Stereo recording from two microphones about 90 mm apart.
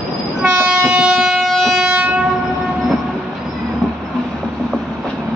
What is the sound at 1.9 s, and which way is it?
Train, 15° right (ahead or behind).